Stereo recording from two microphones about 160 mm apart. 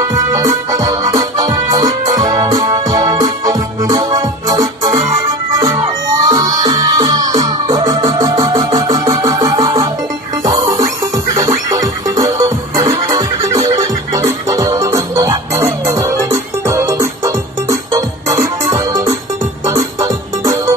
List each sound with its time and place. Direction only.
0.3 s music: 20° right (ahead or behind)
6.2 s music: 25° right (ahead or behind)